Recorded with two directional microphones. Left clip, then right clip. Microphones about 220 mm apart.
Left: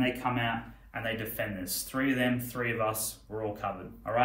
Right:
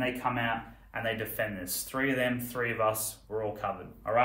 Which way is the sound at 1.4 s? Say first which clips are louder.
Right 1 dB; 20° right (ahead or behind).